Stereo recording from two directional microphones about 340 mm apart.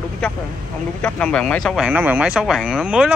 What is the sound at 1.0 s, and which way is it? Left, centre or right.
Speech, centre.